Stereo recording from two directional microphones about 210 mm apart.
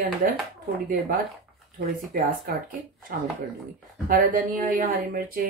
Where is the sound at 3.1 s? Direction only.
45° right (ahead or behind).